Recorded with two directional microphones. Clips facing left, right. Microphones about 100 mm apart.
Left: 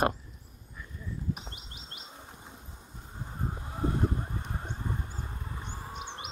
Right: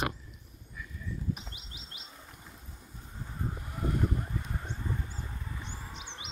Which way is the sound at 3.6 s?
25° left (ahead or behind).